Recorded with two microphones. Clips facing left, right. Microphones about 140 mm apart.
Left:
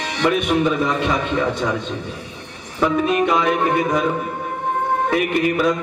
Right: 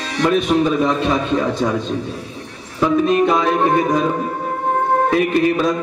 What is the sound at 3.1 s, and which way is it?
Music, 35° right (ahead or behind).